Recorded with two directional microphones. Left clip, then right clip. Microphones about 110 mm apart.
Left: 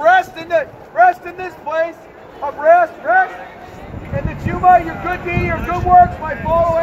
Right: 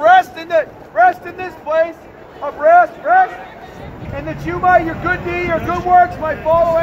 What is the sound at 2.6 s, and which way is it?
Speech, 30° right (ahead or behind).